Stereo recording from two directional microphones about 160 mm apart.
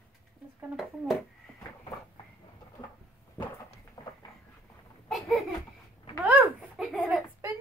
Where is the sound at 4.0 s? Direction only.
25° left (ahead or behind).